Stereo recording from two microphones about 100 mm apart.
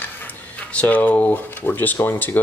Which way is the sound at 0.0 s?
15° left (ahead or behind).